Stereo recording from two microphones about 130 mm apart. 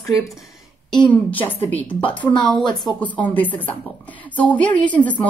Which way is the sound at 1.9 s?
40° left (ahead or behind).